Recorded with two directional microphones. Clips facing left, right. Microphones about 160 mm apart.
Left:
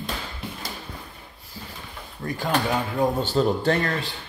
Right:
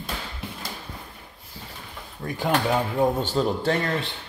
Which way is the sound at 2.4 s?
15° right (ahead or behind).